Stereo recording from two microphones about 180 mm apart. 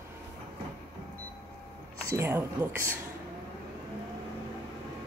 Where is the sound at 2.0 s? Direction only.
15° right (ahead or behind).